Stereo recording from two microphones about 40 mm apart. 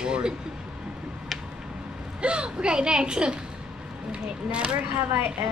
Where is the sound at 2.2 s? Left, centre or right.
Right.